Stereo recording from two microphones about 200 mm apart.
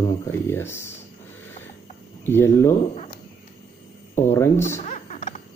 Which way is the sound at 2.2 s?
10° left (ahead or behind).